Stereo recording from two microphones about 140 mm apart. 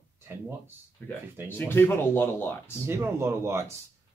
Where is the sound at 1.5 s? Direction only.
15° left (ahead or behind).